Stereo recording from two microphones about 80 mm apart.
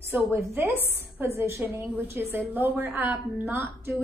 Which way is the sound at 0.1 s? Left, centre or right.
Right.